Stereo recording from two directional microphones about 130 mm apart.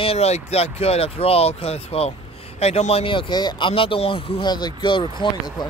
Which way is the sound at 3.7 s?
45° left (ahead or behind).